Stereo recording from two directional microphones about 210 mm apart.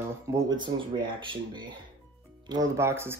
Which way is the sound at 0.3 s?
20° right (ahead or behind).